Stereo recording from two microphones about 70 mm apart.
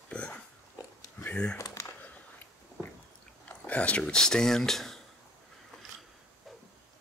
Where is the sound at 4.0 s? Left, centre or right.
Centre.